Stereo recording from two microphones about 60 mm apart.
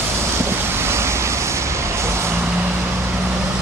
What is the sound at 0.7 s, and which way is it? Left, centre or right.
Vehicle, right.